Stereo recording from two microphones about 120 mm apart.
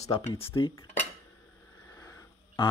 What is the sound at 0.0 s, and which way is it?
Speech, 65° left (ahead or behind).